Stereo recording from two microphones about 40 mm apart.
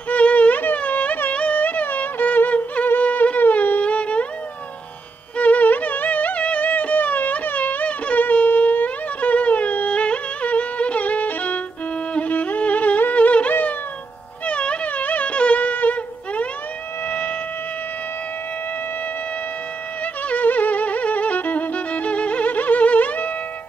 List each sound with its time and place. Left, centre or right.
0.1 s music: left
0.7 s a sound: left
1.3 s music: left
3.0 s a sound: left
3.8 s music: left
5.4 s music: left
13.5 s music: left
14.4 s music: left
20.2 s violin: left